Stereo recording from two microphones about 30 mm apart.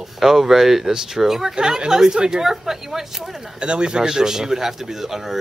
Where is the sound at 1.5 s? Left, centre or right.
Right.